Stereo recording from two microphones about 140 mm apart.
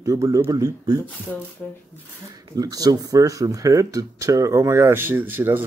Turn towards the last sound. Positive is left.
turn(degrees=-15)  # may be behind; listen again after turning